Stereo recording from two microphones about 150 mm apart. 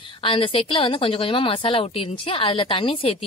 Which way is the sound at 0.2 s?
35° left (ahead or behind).